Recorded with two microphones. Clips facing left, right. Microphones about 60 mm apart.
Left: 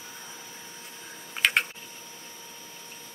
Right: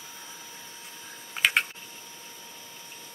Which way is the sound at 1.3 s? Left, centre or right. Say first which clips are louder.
Even; centre.